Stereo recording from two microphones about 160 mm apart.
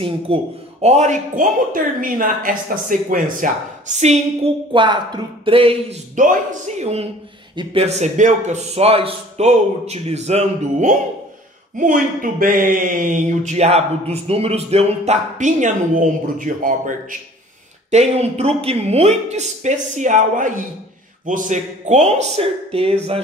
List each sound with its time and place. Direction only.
0.0 s speech: 40° right (ahead or behind); by 3.4 s 55° right (ahead or behind)
3.9 s speech: 45° right (ahead or behind)
4.7 s speech: 30° right (ahead or behind)
6.1 s speech: 55° right (ahead or behind)
17.9 s speech: 40° right (ahead or behind)